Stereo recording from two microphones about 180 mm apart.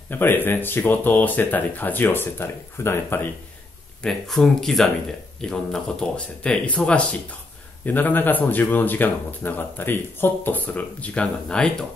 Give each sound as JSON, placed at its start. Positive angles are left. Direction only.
{"t": 0.1, "sound": "speech", "side_deg": 10}
{"t": 4.0, "sound": "speech", "side_deg": 0}